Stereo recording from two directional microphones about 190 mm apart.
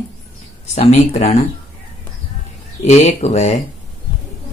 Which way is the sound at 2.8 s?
35° left (ahead or behind).